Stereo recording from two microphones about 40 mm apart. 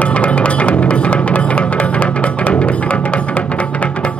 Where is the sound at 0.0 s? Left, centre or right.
Left.